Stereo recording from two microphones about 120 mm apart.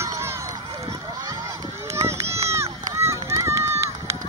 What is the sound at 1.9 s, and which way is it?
Run, 25° right (ahead or behind).